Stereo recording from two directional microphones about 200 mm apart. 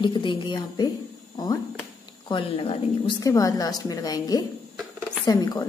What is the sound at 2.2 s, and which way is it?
A woman's voice, 25° left (ahead or behind).